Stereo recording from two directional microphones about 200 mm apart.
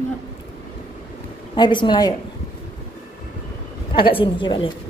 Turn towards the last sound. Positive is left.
turn(degrees=25)  # may be behind; listen again after turning